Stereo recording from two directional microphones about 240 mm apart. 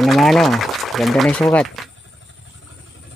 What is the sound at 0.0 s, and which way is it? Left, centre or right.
Speech, centre.